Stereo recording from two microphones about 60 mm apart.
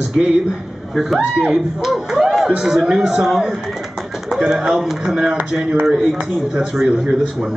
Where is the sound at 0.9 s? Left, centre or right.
Centre.